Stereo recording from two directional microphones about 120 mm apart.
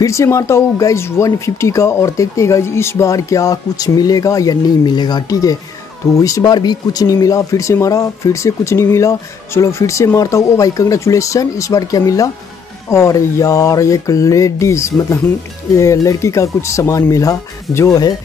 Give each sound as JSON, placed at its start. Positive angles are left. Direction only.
{"t": 0.0, "sound": "speech", "side_deg": 25}